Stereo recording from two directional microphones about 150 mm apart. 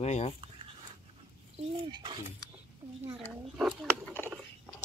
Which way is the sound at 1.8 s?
35° right (ahead or behind).